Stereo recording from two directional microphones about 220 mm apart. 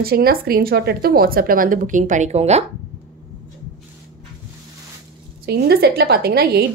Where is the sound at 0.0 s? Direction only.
45° right (ahead or behind).